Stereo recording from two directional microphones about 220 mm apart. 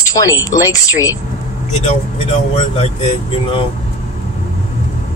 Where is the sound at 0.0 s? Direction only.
15° left (ahead or behind).